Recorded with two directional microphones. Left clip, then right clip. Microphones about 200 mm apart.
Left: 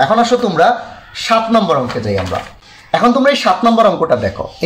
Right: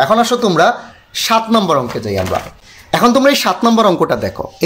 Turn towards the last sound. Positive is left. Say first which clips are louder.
# left 1 dB
turn(degrees=-50)  # may be behind; listen again after turning